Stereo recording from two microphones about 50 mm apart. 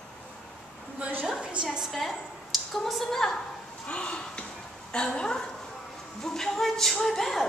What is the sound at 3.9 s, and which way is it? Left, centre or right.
A woman's voice, left.